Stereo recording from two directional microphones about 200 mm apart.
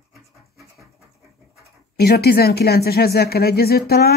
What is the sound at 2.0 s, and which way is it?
Speech, 50° left (ahead or behind).